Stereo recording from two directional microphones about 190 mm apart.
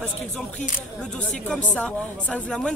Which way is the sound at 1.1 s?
5° left (ahead or behind).